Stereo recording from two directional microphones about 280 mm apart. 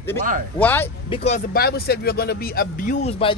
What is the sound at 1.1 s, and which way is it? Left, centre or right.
Speech, left.